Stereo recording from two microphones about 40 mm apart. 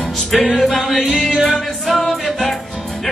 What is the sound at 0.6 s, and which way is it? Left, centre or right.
Music, centre.